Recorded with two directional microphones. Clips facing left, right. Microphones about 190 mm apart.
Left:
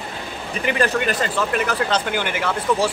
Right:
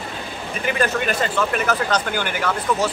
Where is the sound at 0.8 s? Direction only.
35° left (ahead or behind).